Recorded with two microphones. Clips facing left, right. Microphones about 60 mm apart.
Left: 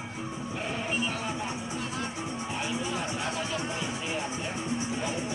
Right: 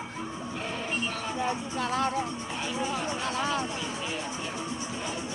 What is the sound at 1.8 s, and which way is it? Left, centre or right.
Music, right.